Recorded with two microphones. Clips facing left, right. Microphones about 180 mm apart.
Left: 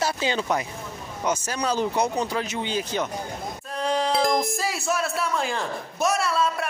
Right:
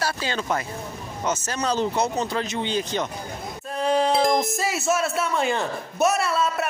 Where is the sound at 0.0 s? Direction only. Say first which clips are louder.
Left 2 dB; 20° left (ahead or behind).